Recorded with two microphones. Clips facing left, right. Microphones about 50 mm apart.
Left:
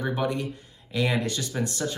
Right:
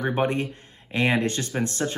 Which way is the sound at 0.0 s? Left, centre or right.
Right.